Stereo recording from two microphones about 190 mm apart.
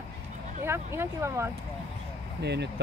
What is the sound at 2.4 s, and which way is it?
Speech, 60° right (ahead or behind).